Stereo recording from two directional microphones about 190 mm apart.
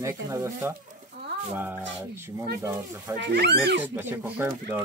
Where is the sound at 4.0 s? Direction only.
10° right (ahead or behind).